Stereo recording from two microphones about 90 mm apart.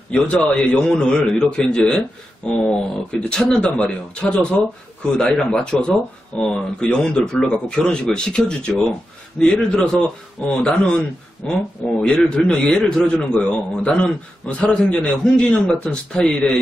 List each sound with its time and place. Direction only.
0.1 s speech: 10° left (ahead or behind)